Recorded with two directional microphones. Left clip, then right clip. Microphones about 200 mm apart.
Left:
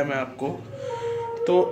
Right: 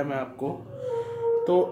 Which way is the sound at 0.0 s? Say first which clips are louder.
Left 3 dB; 10° right (ahead or behind).